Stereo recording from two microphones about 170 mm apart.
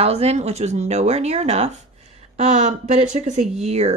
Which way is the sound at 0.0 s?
40° right (ahead or behind).